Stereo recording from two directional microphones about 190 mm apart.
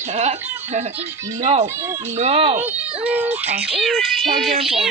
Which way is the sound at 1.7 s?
15° right (ahead or behind).